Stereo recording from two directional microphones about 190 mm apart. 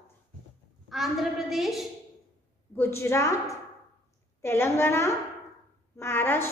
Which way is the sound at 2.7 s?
15° left (ahead or behind).